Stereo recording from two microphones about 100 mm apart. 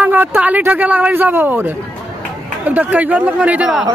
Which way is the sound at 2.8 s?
15° right (ahead or behind).